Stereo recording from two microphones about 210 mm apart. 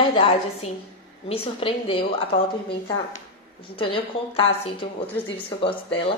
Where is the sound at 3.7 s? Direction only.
25° left (ahead or behind).